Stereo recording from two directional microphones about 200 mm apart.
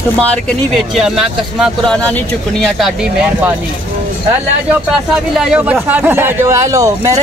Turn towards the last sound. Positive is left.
turn(degrees=-15)  # may be behind; listen again after turning